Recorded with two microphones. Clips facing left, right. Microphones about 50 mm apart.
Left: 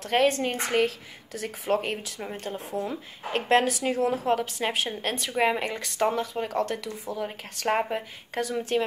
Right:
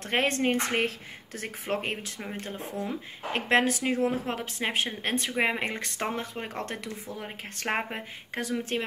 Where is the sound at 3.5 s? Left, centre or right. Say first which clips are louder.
Left 2 dB; right.